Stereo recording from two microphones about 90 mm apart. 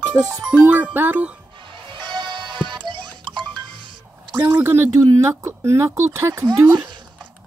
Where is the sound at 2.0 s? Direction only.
60° right (ahead or behind).